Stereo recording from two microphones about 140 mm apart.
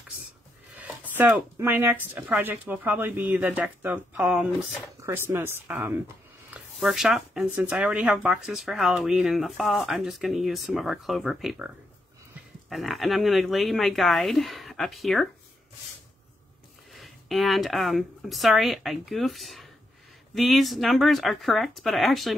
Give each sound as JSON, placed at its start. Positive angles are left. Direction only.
{"t": 0.7, "sound": "speech", "side_deg": -15}
{"t": 6.5, "sound": "a sound", "side_deg": -5}
{"t": 7.5, "sound": "speech", "side_deg": -5}
{"t": 16.9, "sound": "a woman's voice", "side_deg": 0}